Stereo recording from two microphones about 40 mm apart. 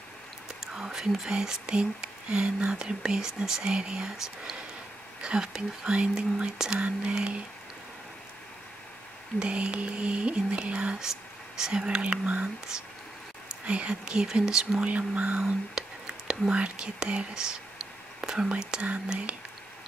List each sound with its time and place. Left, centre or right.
0.7 s speech: centre; by 7.4 s right
9.4 s speech: right
11.0 s speech: centre; by 12.4 s right
13.7 s speech: right
14.2 s speech: centre
14.8 s speech: right
15.4 s whispering: centre
16.5 s speech: right